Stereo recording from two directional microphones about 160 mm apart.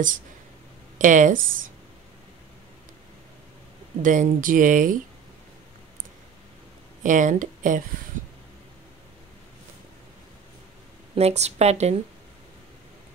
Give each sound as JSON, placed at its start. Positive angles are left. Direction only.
{"t": 0.9, "sound": "speech", "side_deg": -50}
{"t": 4.0, "sound": "speech", "side_deg": -55}
{"t": 7.0, "sound": "speech", "side_deg": -50}
{"t": 11.1, "sound": "speech", "side_deg": -40}